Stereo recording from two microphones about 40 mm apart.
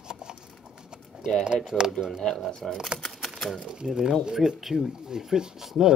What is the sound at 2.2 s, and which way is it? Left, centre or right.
Speech, centre.